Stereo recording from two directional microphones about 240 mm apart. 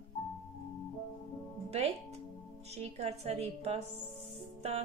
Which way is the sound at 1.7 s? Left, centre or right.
Right.